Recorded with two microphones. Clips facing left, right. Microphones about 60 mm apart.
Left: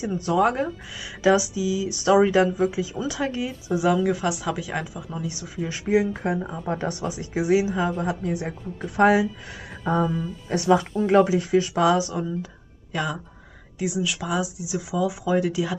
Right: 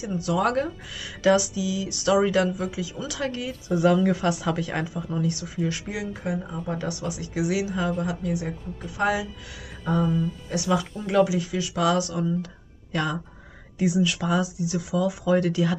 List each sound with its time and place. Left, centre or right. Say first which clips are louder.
0.4 s speech: left 3 dB; centre
5.3 s speech: right 3 dB; centre
5.9 s speech: left 8 dB; left
6.6 s speech: left 2 dB; left
8.0 s speech: left 1 dB; left
10.5 s speech: left 6 dB; left
11.7 s speech: left 3 dB; left
12.9 s speech: even; centre